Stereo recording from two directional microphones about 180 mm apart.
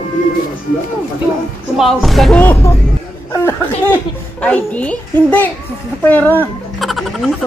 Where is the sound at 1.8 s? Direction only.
Centre (ahead or behind).